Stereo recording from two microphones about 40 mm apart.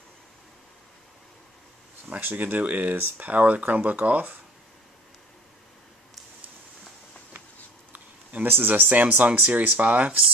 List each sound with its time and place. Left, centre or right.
2.0 s speech: right
7.9 s a sound: right
8.5 s speech: right